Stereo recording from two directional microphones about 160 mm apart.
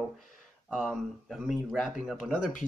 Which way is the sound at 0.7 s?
Centre (ahead or behind).